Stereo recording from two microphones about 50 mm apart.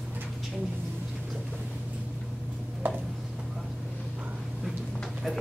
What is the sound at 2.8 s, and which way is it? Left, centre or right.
Tick-tock, right.